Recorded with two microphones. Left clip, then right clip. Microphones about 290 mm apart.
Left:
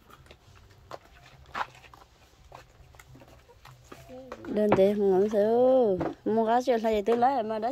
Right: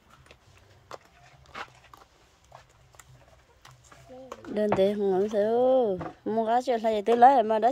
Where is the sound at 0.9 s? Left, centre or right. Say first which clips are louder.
Even; centre.